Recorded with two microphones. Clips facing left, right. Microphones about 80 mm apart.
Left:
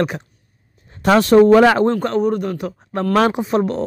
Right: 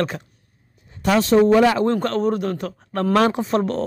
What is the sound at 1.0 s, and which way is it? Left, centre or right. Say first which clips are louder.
Speech: left 5 dB; left.